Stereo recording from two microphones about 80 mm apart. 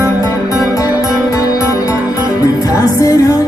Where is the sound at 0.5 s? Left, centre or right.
Left.